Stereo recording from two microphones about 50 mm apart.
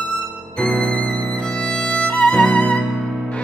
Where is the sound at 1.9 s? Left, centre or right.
Left.